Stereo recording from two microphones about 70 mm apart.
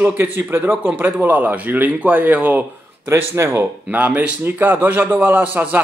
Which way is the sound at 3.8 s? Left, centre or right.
Right.